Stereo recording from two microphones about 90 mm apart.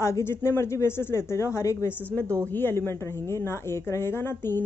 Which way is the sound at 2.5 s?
25° left (ahead or behind).